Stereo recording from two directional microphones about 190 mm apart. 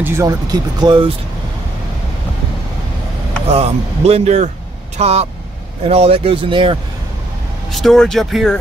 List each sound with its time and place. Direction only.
0.0 s speech: 15° right (ahead or behind)
3.4 s speech: 35° right (ahead or behind)
7.7 s speech: centre (ahead or behind)